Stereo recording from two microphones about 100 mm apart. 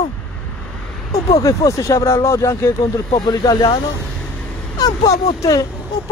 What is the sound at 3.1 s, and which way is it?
A man's voice, 45° left (ahead or behind).